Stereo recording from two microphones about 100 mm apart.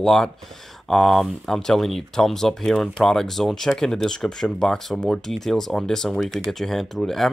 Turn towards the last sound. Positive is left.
turn(degrees=5)  # may be behind; listen again after turning